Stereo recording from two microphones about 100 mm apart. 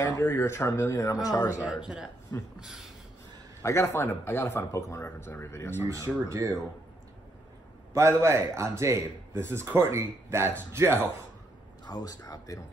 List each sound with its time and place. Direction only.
0.0 s speech: 25° left (ahead or behind)
1.7 s speech: 5° right (ahead or behind)
2.3 s speech: 40° left (ahead or behind)
2.6 s speech: 5° right (ahead or behind)
3.6 s speech: 25° left (ahead or behind)
5.9 s speech: 30° right (ahead or behind)
7.9 s speech: 30° right (ahead or behind)
11.9 s speech: 40° left (ahead or behind)